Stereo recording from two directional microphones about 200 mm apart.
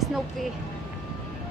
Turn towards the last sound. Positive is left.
turn(degrees=0)  # may be behind; listen again after turning